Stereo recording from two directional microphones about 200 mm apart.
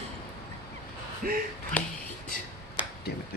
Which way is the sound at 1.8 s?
10° left (ahead or behind).